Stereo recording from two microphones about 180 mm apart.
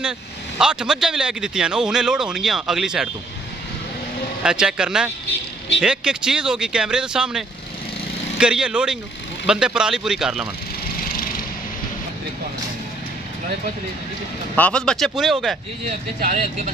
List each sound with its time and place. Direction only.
0.6 s speech: 5° right (ahead or behind)
4.4 s speech: 5° right (ahead or behind)
14.5 s speech: 5° left (ahead or behind)
16.2 s speech: 50° right (ahead or behind)